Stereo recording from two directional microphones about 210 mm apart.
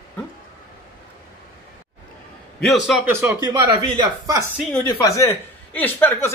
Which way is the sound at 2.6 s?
Centre (ahead or behind).